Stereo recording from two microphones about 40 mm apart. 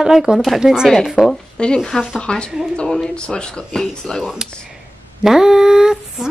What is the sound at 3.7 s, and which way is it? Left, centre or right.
Speech, centre.